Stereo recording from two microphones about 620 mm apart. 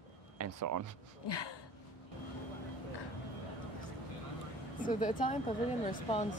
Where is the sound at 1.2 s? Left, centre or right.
Left.